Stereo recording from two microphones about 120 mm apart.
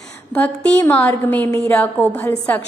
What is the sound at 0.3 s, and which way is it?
A woman's voice, 10° left (ahead or behind).